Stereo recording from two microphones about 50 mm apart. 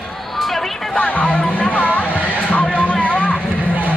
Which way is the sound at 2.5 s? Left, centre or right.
Left.